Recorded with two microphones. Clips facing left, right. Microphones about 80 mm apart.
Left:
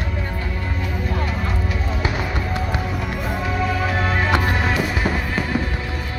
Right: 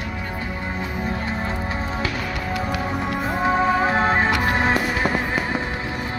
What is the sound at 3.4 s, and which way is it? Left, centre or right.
Music, right.